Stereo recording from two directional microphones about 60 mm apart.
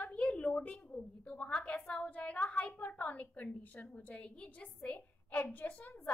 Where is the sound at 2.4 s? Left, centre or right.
Left.